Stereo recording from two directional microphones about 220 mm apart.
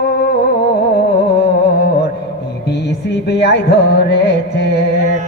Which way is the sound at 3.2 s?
50° left (ahead or behind).